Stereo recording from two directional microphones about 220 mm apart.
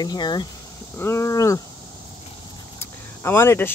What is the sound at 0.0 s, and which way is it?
Speech, 20° left (ahead or behind).